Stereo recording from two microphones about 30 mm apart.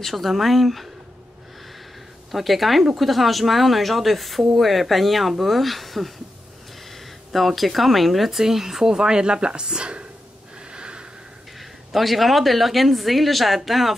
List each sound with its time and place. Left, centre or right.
0.0 s speech: centre
2.3 s speech: centre
7.3 s speech: centre
8.4 s speech: centre
8.8 s speech: right
10.7 s a sound: right
11.9 s speech: centre